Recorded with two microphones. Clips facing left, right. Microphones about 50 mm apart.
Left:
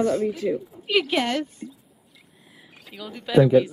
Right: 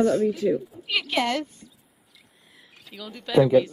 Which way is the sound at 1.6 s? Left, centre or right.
Left.